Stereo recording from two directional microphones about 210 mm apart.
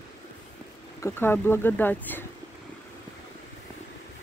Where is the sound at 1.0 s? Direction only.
10° left (ahead or behind).